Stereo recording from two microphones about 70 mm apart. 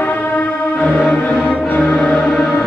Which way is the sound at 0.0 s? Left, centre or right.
Left.